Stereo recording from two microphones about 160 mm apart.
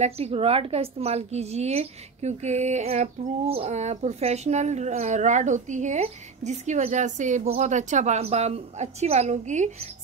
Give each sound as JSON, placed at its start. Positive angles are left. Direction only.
{"t": 0.0, "sound": "a woman's voice", "side_deg": -40}